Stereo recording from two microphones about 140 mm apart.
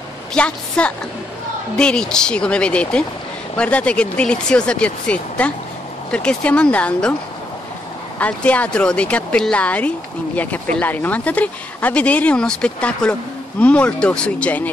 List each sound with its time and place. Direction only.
0.3 s speech: 10° left (ahead or behind)
8.2 s speech: 10° left (ahead or behind)